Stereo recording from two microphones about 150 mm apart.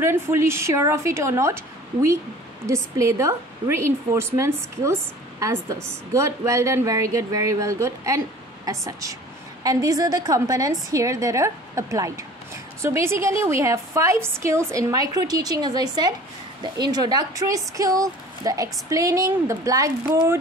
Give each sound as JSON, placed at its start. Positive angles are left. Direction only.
{"t": 0.0, "sound": "a woman's voice", "side_deg": -15}